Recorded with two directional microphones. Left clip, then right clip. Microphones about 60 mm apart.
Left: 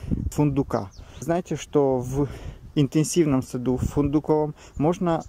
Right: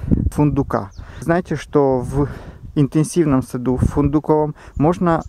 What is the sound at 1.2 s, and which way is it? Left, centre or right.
Speech, right.